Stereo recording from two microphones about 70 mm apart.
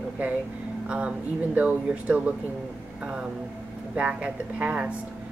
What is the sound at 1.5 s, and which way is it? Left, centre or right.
Speech, centre.